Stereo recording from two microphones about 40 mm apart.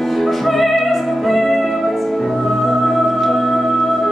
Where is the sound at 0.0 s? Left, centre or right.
Centre.